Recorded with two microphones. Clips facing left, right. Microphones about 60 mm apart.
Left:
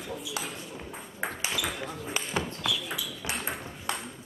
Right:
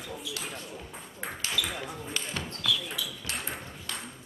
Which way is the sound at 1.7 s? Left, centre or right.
Centre.